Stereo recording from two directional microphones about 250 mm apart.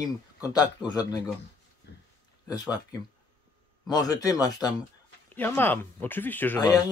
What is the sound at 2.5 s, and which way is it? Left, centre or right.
Speech, centre.